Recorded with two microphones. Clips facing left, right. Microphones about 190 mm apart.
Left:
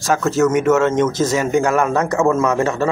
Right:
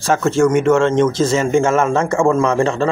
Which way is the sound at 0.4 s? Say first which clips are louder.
Right 1 dB; 5° left (ahead or behind).